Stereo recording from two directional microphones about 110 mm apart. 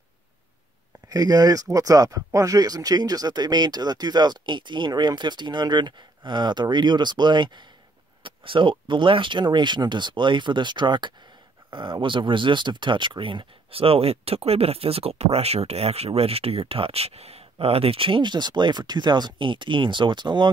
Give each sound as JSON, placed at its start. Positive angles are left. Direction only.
{"t": 1.0, "sound": "speech", "side_deg": -35}